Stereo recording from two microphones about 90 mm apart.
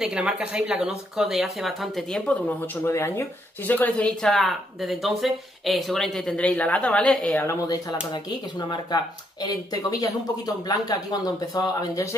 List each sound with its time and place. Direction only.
0.0 s speech: 10° right (ahead or behind)
2.8 s a woman's voice: 30° left (ahead or behind)
3.6 s a woman's voice: 20° left (ahead or behind)
4.2 s speech: 5° left (ahead or behind)
6.3 s speech: 10° left (ahead or behind)
8.5 s speech: 55° left (ahead or behind)